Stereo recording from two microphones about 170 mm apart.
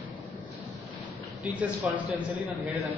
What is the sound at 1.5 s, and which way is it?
Speech, 10° right (ahead or behind).